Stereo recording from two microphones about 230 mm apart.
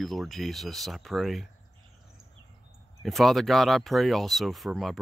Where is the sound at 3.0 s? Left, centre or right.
Centre.